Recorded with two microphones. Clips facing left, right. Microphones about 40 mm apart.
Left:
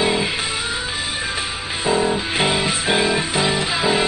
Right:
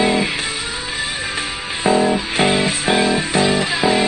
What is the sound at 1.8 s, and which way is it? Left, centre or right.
Music, right.